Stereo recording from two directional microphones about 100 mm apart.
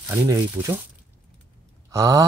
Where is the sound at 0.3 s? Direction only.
30° right (ahead or behind).